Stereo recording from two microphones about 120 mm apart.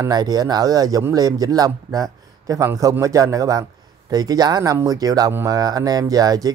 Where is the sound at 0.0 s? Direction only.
35° right (ahead or behind).